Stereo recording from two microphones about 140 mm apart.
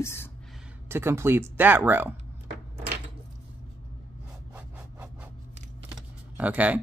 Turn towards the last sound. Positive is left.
turn(degrees=-10)  # may be behind; listen again after turning